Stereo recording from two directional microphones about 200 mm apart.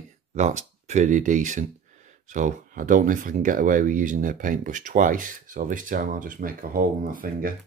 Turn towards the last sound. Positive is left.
turn(degrees=-45)  # may be behind; listen again after turning